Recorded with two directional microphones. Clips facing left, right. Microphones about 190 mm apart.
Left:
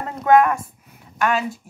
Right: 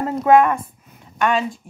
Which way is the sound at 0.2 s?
Centre (ahead or behind).